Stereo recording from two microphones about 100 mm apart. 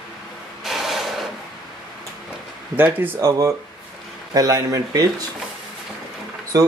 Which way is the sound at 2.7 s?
20° right (ahead or behind).